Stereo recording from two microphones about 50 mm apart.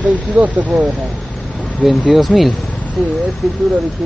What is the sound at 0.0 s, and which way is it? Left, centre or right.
Speech, right.